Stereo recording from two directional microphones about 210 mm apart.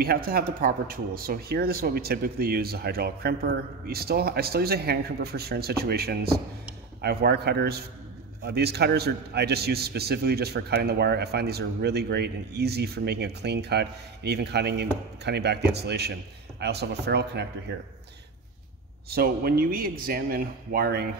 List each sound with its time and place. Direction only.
0.0 s a man's voice: 45° right (ahead or behind)
19.0 s a man's voice: 45° right (ahead or behind)